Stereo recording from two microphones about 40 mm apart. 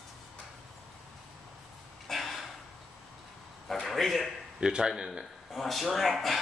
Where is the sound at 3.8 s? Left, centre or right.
Centre.